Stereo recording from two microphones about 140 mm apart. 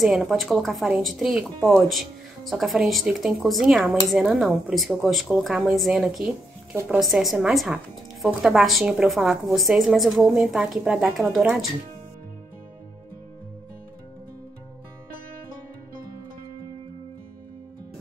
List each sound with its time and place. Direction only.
0.0 s a woman's voice: centre (ahead or behind)
6.7 s a woman's voice: 15° right (ahead or behind)
7.0 s a woman's voice: centre (ahead or behind)